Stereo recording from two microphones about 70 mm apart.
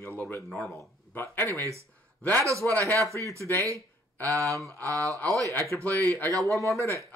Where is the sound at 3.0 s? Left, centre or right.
Right.